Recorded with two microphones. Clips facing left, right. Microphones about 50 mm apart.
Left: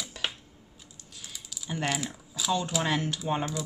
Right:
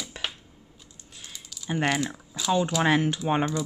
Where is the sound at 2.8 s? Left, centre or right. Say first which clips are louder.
Right 6 dB; right.